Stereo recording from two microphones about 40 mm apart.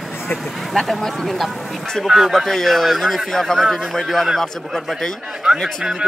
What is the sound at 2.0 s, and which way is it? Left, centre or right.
Speech, centre.